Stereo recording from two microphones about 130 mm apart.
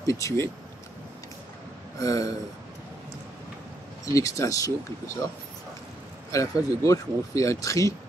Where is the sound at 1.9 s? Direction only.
25° left (ahead or behind).